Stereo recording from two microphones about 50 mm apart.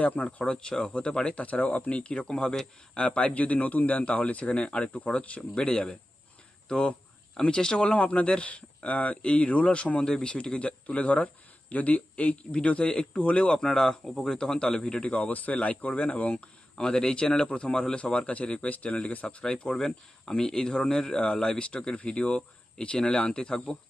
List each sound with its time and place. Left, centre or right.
0.0 s speech: left
1.4 s speech: left
13.6 s speech: centre; by 16.4 s left
16.7 s speech: centre